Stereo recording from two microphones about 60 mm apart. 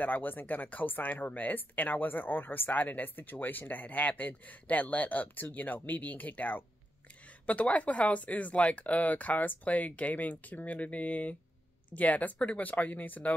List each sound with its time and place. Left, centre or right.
0.0 s speech: left